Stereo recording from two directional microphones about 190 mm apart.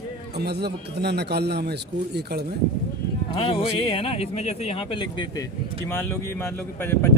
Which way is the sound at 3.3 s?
25° left (ahead or behind).